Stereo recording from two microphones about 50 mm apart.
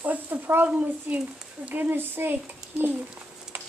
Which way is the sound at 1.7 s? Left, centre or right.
Right.